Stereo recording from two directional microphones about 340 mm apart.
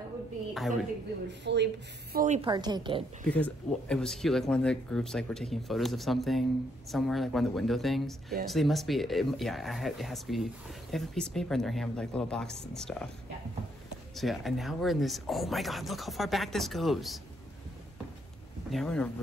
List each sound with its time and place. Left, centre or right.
0.6 s speech: centre
1.4 s speech: right
2.1 s a woman's voice: right
3.3 s speech: centre
14.1 s speech: centre
18.7 s speech: centre